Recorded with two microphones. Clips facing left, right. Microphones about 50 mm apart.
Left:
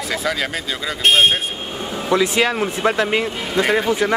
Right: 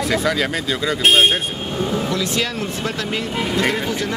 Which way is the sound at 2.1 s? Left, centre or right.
Left.